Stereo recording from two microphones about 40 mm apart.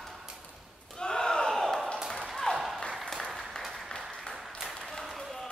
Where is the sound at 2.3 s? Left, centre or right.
Centre.